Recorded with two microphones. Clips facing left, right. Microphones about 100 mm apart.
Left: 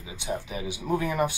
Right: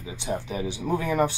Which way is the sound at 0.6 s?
10° left (ahead or behind).